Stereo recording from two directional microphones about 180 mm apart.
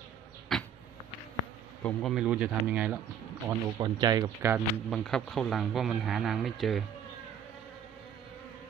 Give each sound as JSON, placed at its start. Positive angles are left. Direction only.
{"t": 0.5, "sound": "a sound", "side_deg": 0}
{"t": 1.8, "sound": "a man's voice", "side_deg": 5}
{"t": 3.4, "sound": "speech", "side_deg": -20}
{"t": 4.8, "sound": "a man's voice", "side_deg": 0}